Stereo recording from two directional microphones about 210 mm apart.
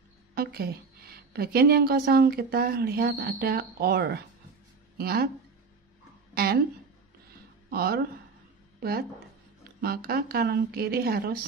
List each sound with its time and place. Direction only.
0.3 s a woman's voice: 45° right (ahead or behind)
6.3 s a woman's voice: 45° right (ahead or behind)
7.7 s a woman's voice: 45° right (ahead or behind)
9.8 s a woman's voice: 45° right (ahead or behind)